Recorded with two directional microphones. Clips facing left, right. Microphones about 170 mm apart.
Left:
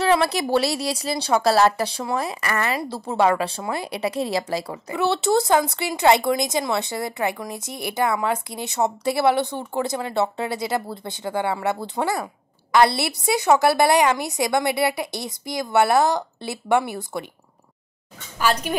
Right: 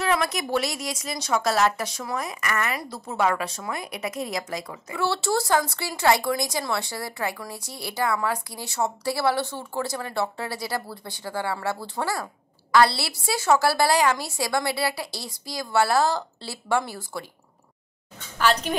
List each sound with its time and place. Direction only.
0.0 s speech: 30° left (ahead or behind)
4.9 s speech: 20° left (ahead or behind)
18.4 s speech: 10° left (ahead or behind)